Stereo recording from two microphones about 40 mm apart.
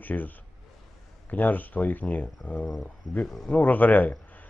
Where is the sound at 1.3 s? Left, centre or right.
Left.